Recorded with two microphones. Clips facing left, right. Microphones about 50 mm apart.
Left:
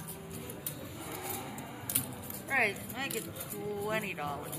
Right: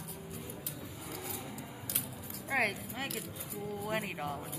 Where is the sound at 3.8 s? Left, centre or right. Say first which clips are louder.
Even; centre.